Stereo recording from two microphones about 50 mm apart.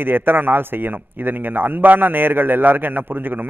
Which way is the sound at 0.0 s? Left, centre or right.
Right.